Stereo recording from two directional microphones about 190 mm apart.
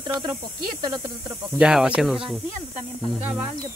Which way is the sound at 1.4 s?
5° right (ahead or behind).